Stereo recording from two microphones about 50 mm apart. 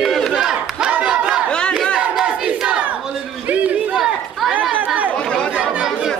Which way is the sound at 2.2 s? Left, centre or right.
Centre.